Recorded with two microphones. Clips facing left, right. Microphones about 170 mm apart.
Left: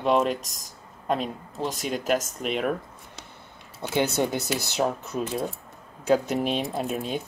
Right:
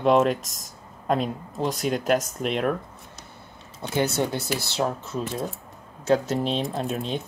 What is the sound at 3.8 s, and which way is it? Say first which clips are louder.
Speech: even; 15° left (ahead or behind).